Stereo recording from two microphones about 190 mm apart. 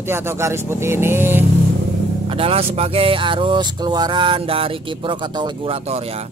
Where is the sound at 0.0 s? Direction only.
15° right (ahead or behind).